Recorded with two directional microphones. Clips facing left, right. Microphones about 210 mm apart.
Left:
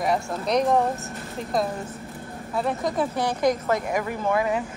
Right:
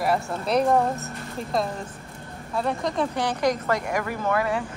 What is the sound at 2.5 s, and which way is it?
Speech, centre (ahead or behind).